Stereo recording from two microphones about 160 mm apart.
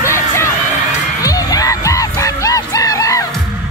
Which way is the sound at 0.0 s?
15° left (ahead or behind).